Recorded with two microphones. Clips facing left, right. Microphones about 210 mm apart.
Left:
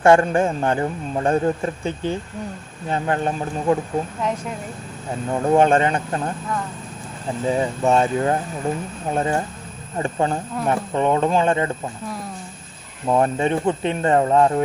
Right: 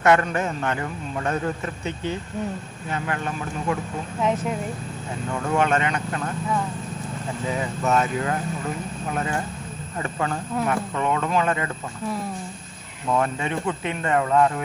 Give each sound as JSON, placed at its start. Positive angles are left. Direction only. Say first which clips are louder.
{"t": 0.0, "sound": "a man's voice", "louder": "left 5 dB", "side_deg": 30}
{"t": 5.3, "sound": "a man's voice", "louder": "left 6 dB", "side_deg": 35}
{"t": 7.4, "sound": "a man's voice", "louder": "left 6 dB", "side_deg": 30}
{"t": 13.0, "sound": "a man's voice", "louder": "left 5 dB", "side_deg": 35}